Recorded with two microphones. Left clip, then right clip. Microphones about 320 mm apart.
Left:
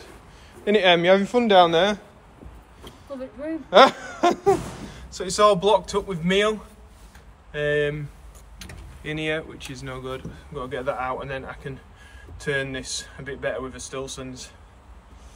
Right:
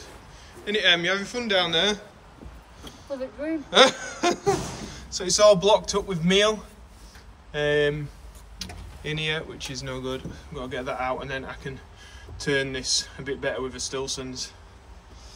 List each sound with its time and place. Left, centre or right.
0.7 s a man's voice: centre
3.7 s speech: centre